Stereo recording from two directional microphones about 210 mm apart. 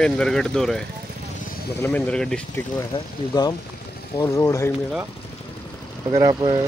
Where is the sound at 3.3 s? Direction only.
20° left (ahead or behind).